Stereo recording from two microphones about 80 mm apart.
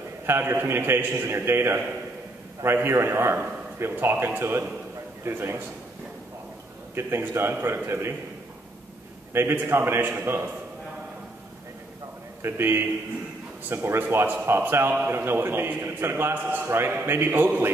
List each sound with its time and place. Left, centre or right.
0.3 s a man's voice: right
7.0 s a man's voice: right
9.3 s a man's voice: right
12.4 s a man's voice: right